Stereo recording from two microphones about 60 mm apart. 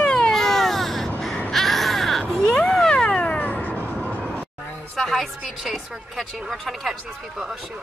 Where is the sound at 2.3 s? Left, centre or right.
Centre; by 3.7 s left.